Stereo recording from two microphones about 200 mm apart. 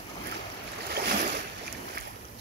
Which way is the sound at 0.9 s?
50° right (ahead or behind).